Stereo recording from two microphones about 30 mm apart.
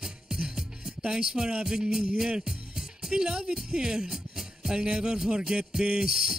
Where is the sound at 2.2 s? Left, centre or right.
Right.